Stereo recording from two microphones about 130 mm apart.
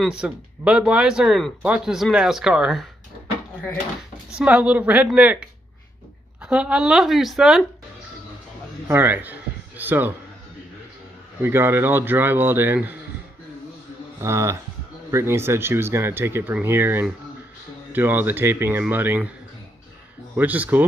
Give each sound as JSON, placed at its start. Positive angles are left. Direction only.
{"t": 0.2, "sound": "speech", "side_deg": -5}
{"t": 4.4, "sound": "speech", "side_deg": -10}
{"t": 6.4, "sound": "speech", "side_deg": -10}
{"t": 8.8, "sound": "a sound", "side_deg": -15}
{"t": 11.4, "sound": "speech", "side_deg": -20}
{"t": 14.2, "sound": "speech", "side_deg": -20}
{"t": 20.3, "sound": "speech", "side_deg": -10}